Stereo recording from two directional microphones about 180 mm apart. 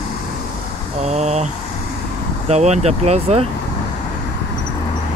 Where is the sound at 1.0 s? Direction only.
35° right (ahead or behind).